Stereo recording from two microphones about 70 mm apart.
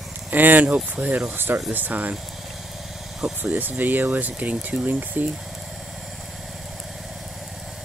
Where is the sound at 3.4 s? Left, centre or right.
Right.